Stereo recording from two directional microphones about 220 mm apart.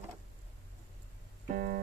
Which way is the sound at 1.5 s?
40° right (ahead or behind).